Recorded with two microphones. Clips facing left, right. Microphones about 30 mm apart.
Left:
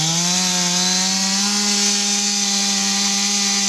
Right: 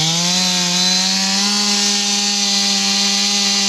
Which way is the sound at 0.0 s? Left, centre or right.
Right.